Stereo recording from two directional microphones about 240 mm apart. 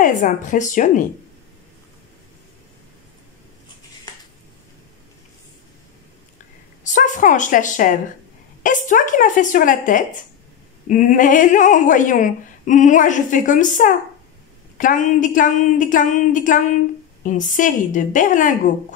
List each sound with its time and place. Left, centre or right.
0.0 s speech: left
6.8 s a woman's voice: left